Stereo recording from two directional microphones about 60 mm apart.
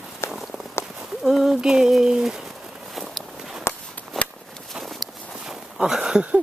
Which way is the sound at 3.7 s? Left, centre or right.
Left.